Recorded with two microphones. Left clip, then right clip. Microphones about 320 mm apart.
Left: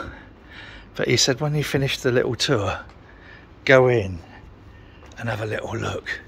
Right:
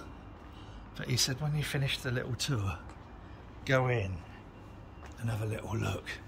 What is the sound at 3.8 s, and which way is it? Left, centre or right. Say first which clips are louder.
Speech: left 14 dB; centre.